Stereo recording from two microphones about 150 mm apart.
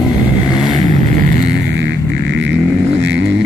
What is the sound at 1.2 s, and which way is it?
Music, 65° right (ahead or behind).